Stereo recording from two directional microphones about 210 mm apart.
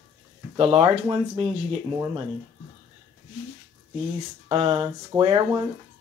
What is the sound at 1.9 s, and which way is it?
Speech, 15° right (ahead or behind).